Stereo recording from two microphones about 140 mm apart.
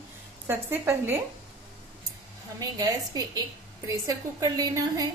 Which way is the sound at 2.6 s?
25° right (ahead or behind).